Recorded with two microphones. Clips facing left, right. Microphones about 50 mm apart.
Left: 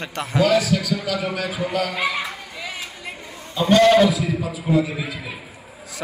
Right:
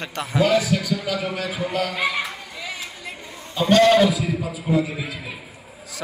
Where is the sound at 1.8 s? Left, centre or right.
Centre.